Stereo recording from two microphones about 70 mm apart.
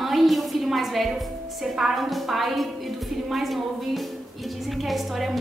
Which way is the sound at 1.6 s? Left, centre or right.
Centre.